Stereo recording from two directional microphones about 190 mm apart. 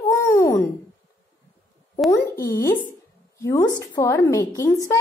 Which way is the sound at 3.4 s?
15° left (ahead or behind).